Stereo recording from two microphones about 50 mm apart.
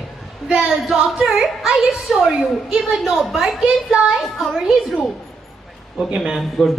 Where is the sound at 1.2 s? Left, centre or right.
Centre.